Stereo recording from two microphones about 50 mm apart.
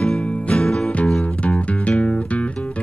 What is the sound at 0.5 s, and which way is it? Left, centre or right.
Music, centre.